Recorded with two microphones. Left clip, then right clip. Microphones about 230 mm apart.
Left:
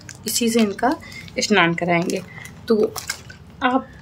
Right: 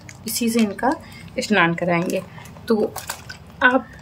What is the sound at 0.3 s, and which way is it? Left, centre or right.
A woman's voice, centre.